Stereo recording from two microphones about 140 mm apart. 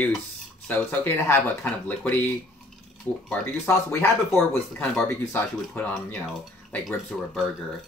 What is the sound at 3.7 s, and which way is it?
Speech, 15° left (ahead or behind).